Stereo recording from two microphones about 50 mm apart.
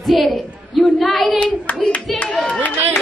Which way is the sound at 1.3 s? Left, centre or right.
Left.